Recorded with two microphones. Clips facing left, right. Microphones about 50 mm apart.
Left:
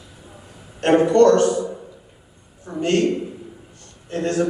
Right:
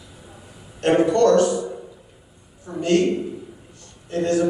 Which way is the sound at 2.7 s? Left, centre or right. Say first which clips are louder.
Right 1 dB; left.